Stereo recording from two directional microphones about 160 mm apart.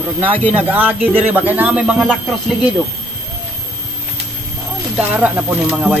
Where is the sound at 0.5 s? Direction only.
10° right (ahead or behind).